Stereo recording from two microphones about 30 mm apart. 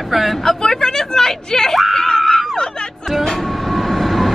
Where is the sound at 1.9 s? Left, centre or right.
Centre.